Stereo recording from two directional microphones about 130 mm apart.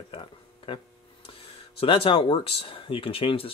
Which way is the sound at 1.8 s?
45° left (ahead or behind).